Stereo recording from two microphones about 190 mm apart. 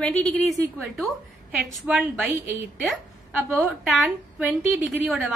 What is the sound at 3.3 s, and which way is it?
A woman's voice, 10° right (ahead or behind).